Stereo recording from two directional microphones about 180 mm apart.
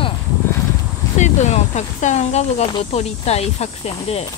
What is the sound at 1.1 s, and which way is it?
Speech, 40° left (ahead or behind).